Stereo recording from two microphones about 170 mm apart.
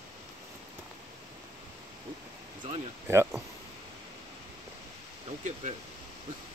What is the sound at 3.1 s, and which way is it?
Speech, 15° right (ahead or behind).